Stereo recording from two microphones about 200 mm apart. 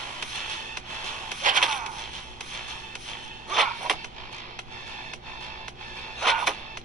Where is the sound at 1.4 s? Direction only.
40° right (ahead or behind).